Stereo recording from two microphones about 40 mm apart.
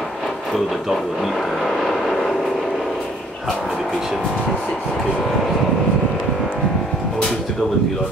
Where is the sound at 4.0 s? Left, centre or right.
Centre.